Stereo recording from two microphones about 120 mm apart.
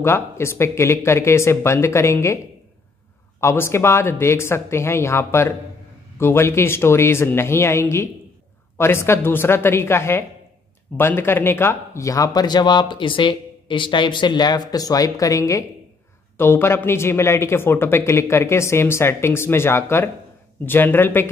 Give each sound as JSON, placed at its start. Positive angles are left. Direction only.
{"t": 0.0, "sound": "speech", "side_deg": 20}
{"t": 3.3, "sound": "speech", "side_deg": 20}